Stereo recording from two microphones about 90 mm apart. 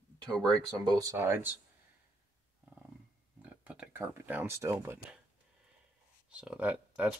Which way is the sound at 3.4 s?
15° right (ahead or behind).